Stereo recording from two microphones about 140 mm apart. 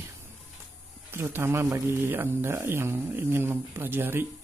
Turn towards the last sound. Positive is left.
turn(degrees=-15)  # may be behind; listen again after turning